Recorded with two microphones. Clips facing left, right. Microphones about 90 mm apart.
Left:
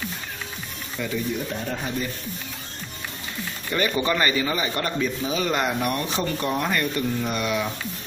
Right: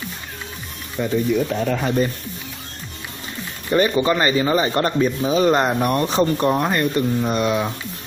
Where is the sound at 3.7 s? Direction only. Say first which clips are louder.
Right 6 dB; 25° right (ahead or behind).